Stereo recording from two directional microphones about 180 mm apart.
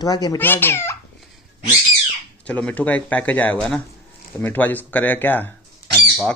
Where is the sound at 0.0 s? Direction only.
20° left (ahead or behind).